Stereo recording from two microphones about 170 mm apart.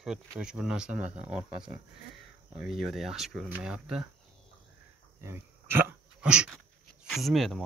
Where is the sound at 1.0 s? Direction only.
40° right (ahead or behind).